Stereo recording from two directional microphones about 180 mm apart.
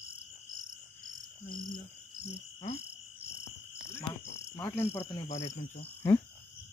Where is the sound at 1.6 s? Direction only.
25° left (ahead or behind).